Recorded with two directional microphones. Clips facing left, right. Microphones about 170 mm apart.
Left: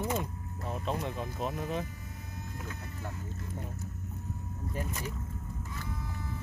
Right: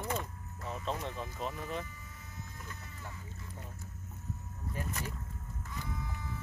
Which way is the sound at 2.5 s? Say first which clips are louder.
Left 7 dB; 70° left (ahead or behind).